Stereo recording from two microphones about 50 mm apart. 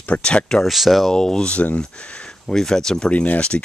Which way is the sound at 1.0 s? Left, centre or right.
Centre.